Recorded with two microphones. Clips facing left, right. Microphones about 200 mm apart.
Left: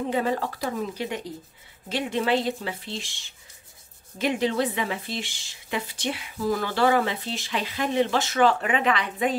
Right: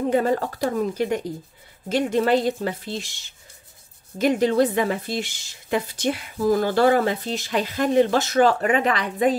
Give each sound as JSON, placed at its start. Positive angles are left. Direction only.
{"t": 0.1, "sound": "speech", "side_deg": -45}
{"t": 4.2, "sound": "speech", "side_deg": -45}